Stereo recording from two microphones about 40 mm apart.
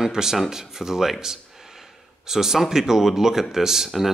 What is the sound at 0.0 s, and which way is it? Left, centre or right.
Speech, centre.